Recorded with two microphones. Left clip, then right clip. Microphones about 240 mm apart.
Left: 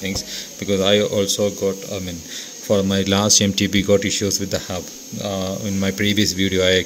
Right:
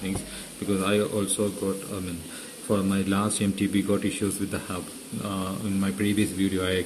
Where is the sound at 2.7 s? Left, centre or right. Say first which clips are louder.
Left 8 dB; left.